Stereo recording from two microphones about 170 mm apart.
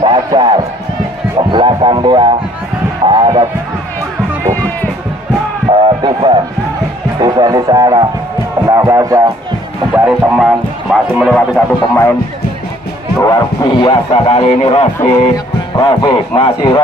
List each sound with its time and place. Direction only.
0.0 s music: 25° right (ahead or behind)
5.7 s music: 30° right (ahead or behind)
9.9 s music: 10° right (ahead or behind)
11.9 s speech: 15° left (ahead or behind)
13.2 s speech: 25° left (ahead or behind)
15.0 s speech: 20° left (ahead or behind)